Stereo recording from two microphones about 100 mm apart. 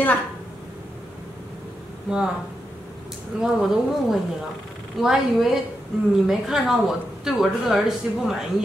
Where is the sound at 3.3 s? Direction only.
10° right (ahead or behind).